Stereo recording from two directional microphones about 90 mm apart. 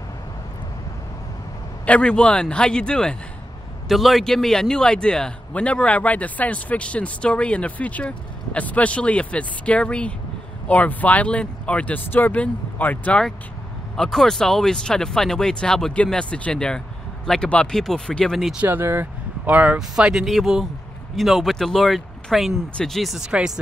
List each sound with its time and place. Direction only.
1.9 s a man's voice: 10° left (ahead or behind)
13.9 s a man's voice: 5° left (ahead or behind)
18.5 s speech: 20° right (ahead or behind)